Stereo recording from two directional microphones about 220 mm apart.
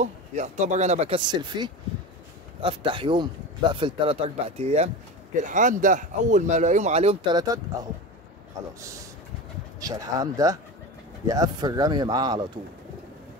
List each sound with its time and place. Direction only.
0.0 s speech: 30° right (ahead or behind); by 7.9 s 15° right (ahead or behind)
9.8 s speech: 15° right (ahead or behind)